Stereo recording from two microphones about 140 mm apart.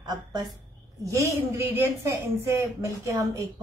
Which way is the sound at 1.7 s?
15° right (ahead or behind).